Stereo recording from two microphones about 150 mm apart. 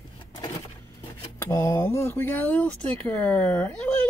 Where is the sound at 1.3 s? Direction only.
20° left (ahead or behind).